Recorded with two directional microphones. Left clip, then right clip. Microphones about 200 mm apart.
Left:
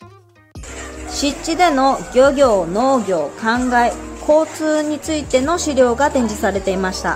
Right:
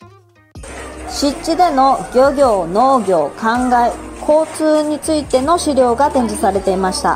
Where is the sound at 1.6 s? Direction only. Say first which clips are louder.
Right 2 dB; 25° left (ahead or behind).